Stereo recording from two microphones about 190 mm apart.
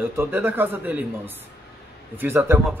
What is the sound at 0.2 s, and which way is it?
Speech, 10° right (ahead or behind).